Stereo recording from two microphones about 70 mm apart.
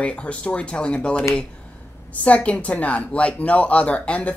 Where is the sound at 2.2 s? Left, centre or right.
Centre.